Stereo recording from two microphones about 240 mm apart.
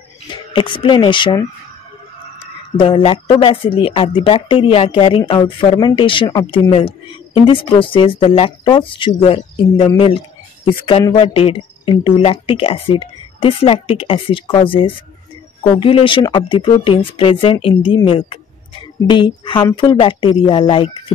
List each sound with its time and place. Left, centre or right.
0.3 s speech: centre
2.8 s speech: left